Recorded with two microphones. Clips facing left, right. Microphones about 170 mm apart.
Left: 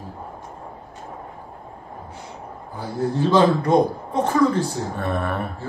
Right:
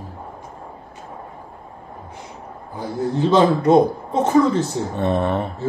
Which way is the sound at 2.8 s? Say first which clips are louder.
Right 1 dB; 20° right (ahead or behind).